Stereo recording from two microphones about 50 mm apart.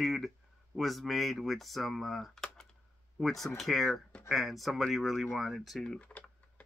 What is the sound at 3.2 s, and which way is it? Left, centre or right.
Speech, centre.